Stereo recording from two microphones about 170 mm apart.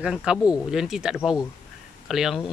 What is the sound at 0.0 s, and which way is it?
Speech, 5° right (ahead or behind).